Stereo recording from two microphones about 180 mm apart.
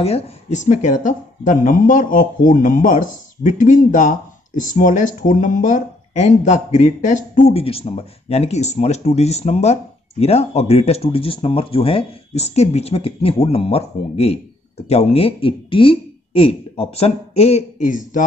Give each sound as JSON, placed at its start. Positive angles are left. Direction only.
{"t": 0.0, "sound": "speech", "side_deg": 40}